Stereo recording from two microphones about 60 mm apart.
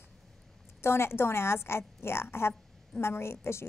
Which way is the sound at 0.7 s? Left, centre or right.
Left.